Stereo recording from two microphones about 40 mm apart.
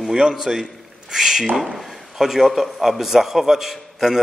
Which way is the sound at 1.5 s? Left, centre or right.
Centre.